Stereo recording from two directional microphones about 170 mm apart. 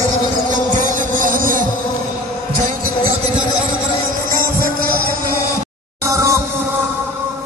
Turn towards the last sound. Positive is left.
turn(degrees=-15)  # may be behind; listen again after turning